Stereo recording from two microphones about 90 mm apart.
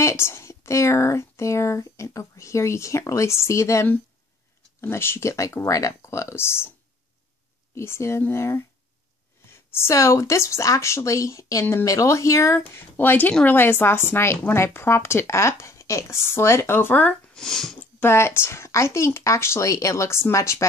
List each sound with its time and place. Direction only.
0.0 s speech: 30° left (ahead or behind)
7.7 s speech: 30° left (ahead or behind)
17.3 s speech: 5° left (ahead or behind)
18.0 s speech: 25° left (ahead or behind)